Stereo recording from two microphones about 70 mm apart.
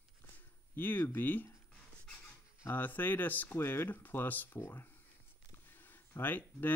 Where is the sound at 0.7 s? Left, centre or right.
Left.